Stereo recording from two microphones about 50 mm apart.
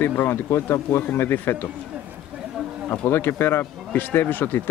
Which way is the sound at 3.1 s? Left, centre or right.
Left.